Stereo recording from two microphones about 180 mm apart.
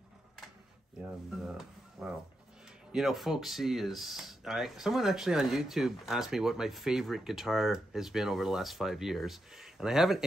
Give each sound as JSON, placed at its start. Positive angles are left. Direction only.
{"t": 1.0, "sound": "speech", "side_deg": -5}